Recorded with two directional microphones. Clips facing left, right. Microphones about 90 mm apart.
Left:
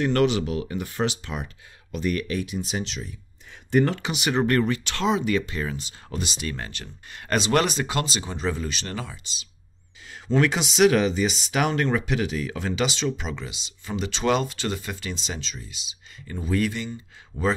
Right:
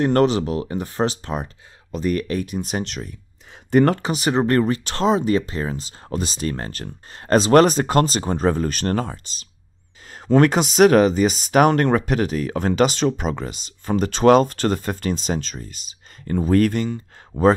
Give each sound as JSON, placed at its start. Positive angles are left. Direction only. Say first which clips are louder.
{"t": 0.0, "sound": "speech", "louder": "right 4 dB", "side_deg": -40}
{"t": 3.9, "sound": "speech", "louder": "right 5 dB", "side_deg": -40}